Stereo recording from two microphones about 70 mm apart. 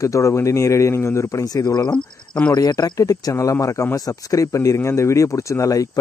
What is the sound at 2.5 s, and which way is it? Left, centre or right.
Speech, left.